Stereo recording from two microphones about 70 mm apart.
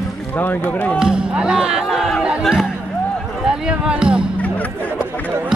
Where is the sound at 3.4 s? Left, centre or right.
Centre.